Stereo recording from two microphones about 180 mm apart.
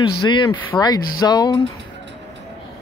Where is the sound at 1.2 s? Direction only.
20° left (ahead or behind).